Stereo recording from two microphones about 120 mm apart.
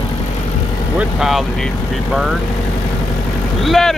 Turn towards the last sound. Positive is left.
turn(degrees=0)  # may be behind; listen again after turning